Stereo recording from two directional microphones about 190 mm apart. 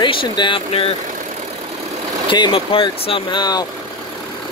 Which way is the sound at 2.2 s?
25° left (ahead or behind).